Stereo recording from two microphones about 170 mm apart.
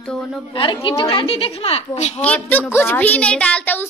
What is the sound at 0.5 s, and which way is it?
A woman's voice, 30° left (ahead or behind).